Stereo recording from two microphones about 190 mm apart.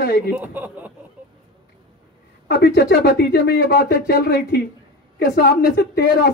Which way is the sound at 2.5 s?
55° left (ahead or behind).